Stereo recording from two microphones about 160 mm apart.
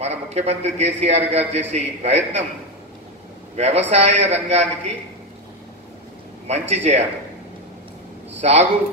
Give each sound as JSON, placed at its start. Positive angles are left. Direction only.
{"t": 0.0, "sound": "a man's voice", "side_deg": -40}
{"t": 3.5, "sound": "a man's voice", "side_deg": -40}
{"t": 6.7, "sound": "a man's voice", "side_deg": -40}
{"t": 8.4, "sound": "speech", "side_deg": -40}